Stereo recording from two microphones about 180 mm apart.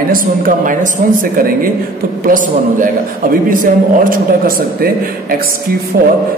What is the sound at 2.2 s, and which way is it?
A man's voice, 50° right (ahead or behind).